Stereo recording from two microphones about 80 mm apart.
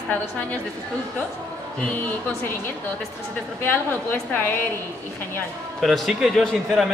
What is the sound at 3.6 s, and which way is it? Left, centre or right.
Speech, left.